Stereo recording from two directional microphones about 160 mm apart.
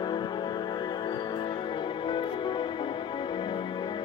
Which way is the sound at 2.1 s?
30° left (ahead or behind).